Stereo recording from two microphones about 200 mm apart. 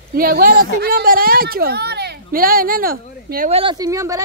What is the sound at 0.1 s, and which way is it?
Speech, 45° right (ahead or behind).